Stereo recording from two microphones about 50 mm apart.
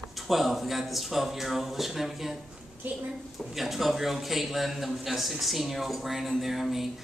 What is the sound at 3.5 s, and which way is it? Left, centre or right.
A man's voice, centre.